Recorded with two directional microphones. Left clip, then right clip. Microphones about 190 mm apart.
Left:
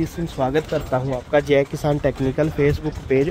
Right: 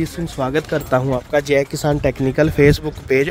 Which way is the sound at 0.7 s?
40° right (ahead or behind).